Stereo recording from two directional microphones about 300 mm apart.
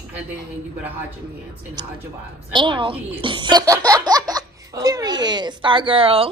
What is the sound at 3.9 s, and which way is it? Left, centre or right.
Baby laughter, centre.